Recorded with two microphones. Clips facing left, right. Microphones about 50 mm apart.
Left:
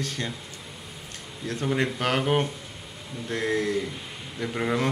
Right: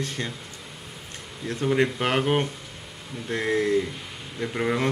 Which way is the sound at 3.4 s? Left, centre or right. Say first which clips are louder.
Right 3 dB; right.